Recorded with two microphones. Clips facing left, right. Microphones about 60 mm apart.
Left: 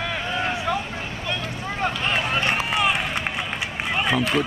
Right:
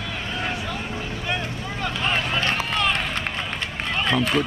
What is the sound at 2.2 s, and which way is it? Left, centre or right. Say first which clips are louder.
Run: left 1 dB; centre.